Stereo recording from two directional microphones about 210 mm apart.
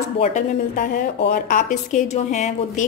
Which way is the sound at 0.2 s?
35° left (ahead or behind).